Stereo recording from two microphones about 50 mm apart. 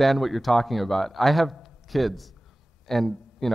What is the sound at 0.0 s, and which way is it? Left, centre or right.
A man's voice, centre.